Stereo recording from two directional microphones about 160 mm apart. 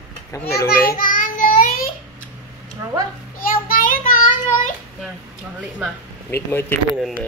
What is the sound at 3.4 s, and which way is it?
Child singing, 60° left (ahead or behind).